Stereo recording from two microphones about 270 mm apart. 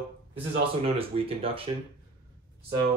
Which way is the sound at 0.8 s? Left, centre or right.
Right.